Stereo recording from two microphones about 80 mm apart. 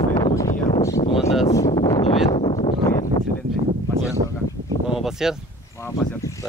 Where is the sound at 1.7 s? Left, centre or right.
Left.